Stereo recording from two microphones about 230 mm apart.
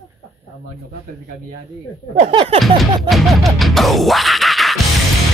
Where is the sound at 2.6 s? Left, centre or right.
Centre.